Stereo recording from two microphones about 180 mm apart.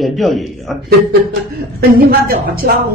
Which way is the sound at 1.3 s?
60° right (ahead or behind).